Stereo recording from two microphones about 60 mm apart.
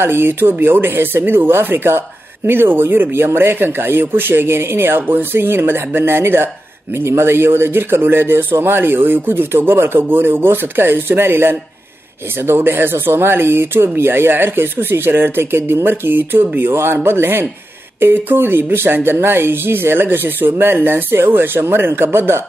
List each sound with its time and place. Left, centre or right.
0.0 s speech: right